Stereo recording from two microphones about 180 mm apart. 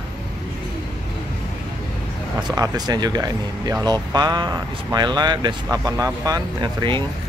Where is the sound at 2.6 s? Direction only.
20° right (ahead or behind).